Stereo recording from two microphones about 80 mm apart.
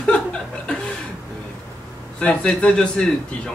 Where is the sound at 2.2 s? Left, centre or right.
Centre.